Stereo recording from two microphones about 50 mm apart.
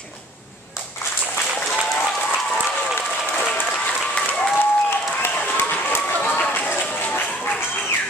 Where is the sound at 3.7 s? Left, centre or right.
Left.